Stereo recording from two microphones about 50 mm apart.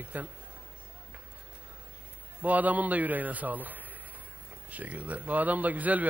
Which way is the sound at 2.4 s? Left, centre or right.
Right.